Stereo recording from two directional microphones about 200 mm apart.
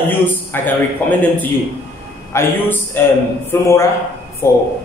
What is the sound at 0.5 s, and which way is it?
Speech, 10° left (ahead or behind).